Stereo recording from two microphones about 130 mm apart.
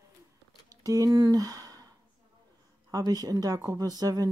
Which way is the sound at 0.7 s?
25° right (ahead or behind).